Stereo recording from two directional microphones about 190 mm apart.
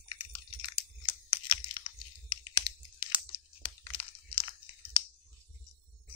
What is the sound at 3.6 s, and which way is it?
Crunch, 30° left (ahead or behind).